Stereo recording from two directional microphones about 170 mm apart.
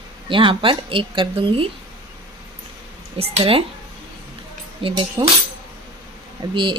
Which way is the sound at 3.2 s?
30° right (ahead or behind).